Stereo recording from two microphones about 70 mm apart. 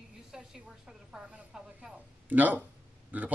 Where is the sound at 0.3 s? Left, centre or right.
Centre.